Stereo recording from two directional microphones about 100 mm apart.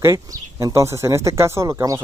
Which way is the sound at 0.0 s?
35° right (ahead or behind).